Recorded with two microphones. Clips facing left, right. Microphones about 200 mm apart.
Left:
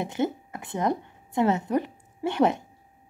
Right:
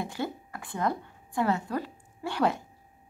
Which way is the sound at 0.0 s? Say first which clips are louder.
Left 6 dB; 20° left (ahead or behind).